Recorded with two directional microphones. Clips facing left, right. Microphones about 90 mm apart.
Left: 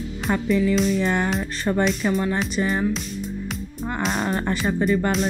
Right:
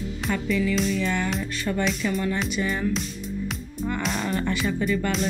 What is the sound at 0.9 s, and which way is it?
Speech, 40° left (ahead or behind).